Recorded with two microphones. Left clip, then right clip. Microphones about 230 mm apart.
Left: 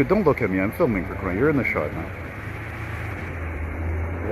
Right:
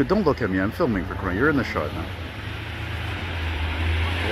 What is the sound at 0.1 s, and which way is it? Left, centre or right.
Speech, centre.